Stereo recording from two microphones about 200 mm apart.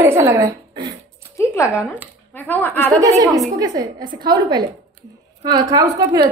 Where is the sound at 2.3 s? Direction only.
10° left (ahead or behind).